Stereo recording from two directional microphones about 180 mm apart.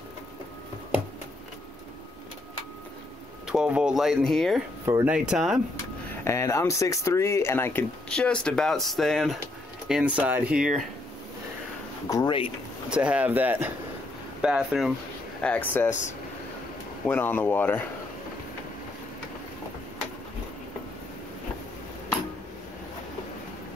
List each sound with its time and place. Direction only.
3.4 s speech: 5° right (ahead or behind)
4.8 s speech: 10° right (ahead or behind)
6.2 s speech: 15° left (ahead or behind); by 10.7 s 5° right (ahead or behind)
12.1 s speech: 20° left (ahead or behind)
12.9 s speech: 5° right (ahead or behind)
15.4 s speech: 10° left (ahead or behind)
15.9 s speech: 40° left (ahead or behind)
17.0 s speech: 10° left (ahead or behind)